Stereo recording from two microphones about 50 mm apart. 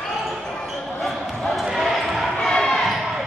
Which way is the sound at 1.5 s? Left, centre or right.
Centre.